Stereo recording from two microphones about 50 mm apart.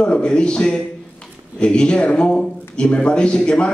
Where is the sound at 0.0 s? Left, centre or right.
Centre.